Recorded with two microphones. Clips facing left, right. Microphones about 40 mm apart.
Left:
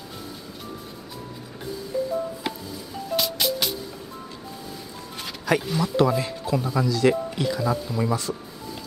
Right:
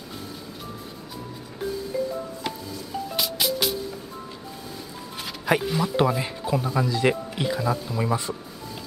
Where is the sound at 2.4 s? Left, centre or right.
Centre.